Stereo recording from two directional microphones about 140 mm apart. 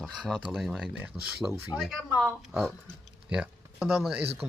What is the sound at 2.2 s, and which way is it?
Speech, centre (ahead or behind).